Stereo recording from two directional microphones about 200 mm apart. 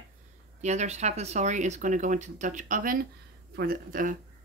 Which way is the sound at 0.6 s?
35° right (ahead or behind).